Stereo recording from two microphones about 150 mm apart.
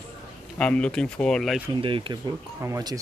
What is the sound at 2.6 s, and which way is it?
Speech, 20° right (ahead or behind).